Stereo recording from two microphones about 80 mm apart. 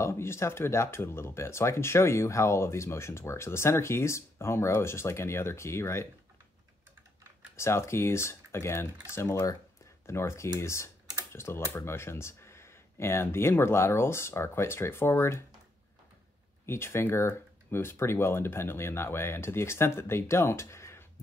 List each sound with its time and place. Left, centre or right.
0.0 s speech: left
7.5 s speech: left
16.6 s speech: left